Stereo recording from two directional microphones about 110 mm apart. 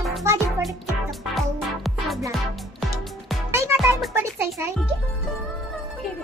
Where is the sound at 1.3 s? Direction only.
Centre (ahead or behind).